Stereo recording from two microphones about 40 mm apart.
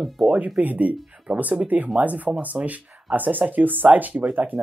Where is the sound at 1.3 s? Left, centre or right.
Centre.